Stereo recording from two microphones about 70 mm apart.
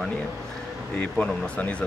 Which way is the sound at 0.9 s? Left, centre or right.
Centre.